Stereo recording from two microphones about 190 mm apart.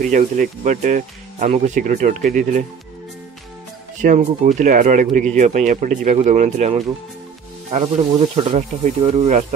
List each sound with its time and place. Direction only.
0.0 s speech: 40° right (ahead or behind)
4.0 s speech: 40° right (ahead or behind)